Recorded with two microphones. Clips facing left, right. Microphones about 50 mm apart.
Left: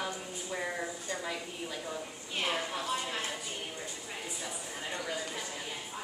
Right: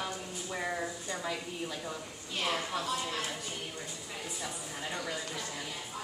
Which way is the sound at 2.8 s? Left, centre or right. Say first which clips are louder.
Even; centre.